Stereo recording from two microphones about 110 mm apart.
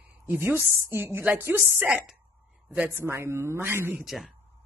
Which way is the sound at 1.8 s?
5° right (ahead or behind).